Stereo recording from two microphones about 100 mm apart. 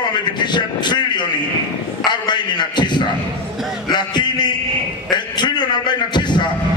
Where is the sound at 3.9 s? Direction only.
50° left (ahead or behind).